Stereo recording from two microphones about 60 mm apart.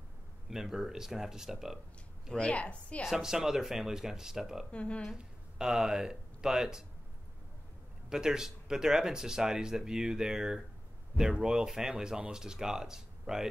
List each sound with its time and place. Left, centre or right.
0.5 s speech: centre
2.3 s a woman's voice: centre
3.1 s speech: centre
4.6 s a woman's voice: centre
5.1 s speech: centre
8.1 s speech: centre